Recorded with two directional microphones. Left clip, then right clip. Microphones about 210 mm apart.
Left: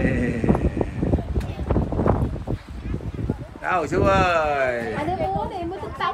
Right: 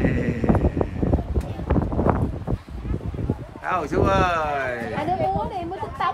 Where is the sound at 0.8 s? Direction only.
20° left (ahead or behind).